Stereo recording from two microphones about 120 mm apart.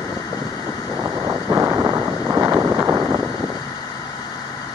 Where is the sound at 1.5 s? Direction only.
15° right (ahead or behind).